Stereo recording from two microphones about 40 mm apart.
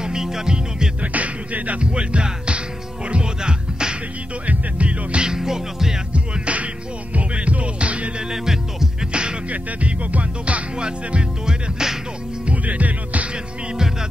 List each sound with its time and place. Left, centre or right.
0.0 s music: centre
1.0 s music: right
1.9 s music: right
5.3 s music: centre
6.1 s music: right
8.2 s music: centre
9.1 s music: right
9.5 s music: right; by 11.9 s centre
12.4 s music: right